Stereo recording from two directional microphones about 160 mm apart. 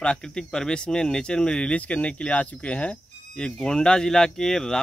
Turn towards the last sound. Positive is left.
turn(degrees=5)  # may be behind; listen again after turning